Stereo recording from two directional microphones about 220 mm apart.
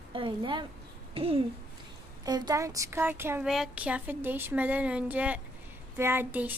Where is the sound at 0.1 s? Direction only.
20° right (ahead or behind).